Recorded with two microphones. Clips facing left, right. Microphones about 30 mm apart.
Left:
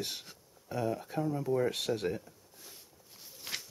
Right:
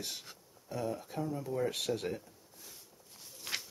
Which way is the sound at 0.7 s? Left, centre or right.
Centre.